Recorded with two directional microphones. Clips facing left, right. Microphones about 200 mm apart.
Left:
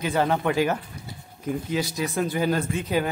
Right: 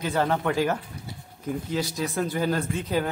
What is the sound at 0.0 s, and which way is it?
Speech, 15° left (ahead or behind).